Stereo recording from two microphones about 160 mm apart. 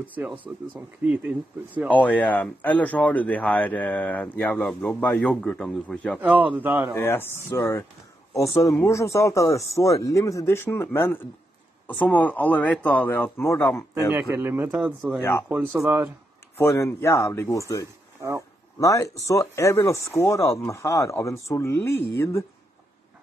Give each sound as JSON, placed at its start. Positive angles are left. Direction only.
{"t": 0.0, "sound": "speech", "side_deg": -10}
{"t": 1.9, "sound": "speech", "side_deg": 10}
{"t": 6.1, "sound": "speech", "side_deg": -10}
{"t": 7.0, "sound": "speech", "side_deg": 15}
{"t": 14.1, "sound": "speech", "side_deg": -15}
{"t": 15.0, "sound": "speech", "side_deg": 10}
{"t": 15.4, "sound": "speech", "side_deg": -5}
{"t": 16.5, "sound": "speech", "side_deg": 15}